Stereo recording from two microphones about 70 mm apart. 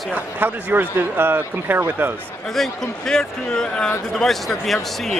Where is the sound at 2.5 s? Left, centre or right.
Centre.